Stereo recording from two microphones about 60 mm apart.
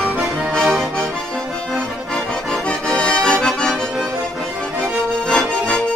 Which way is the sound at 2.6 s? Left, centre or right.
Centre.